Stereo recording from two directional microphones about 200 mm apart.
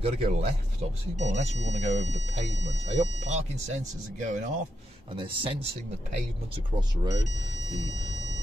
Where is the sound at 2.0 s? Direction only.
65° right (ahead or behind).